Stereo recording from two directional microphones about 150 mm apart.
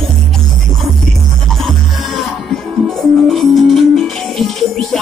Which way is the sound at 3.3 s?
Centre (ahead or behind).